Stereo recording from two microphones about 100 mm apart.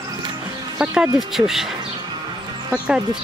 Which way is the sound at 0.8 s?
10° right (ahead or behind).